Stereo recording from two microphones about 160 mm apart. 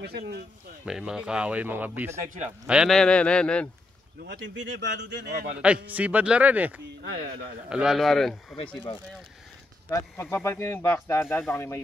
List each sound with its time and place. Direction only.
0.0 s speech: 90° right
0.8 s a man's voice: 5° right (ahead or behind)
4.2 s speech: 90° right
5.6 s speech: 10° right (ahead or behind)
7.0 s speech: 80° right
7.7 s a man's voice: 5° right (ahead or behind)
9.8 s speech: 15° left (ahead or behind)